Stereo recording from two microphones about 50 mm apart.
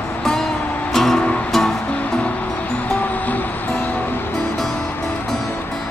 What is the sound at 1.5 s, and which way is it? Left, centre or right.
Music, centre.